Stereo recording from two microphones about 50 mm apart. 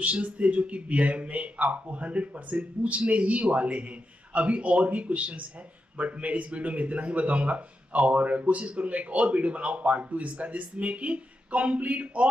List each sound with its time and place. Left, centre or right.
0.0 s speech: right